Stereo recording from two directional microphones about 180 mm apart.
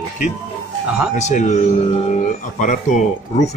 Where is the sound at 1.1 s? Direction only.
40° left (ahead or behind).